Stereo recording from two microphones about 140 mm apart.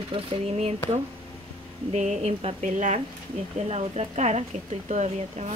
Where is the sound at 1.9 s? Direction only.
50° right (ahead or behind).